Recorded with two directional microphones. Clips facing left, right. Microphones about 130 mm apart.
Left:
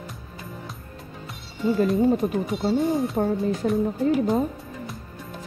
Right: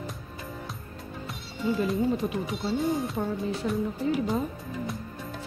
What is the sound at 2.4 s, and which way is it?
Music, centre (ahead or behind).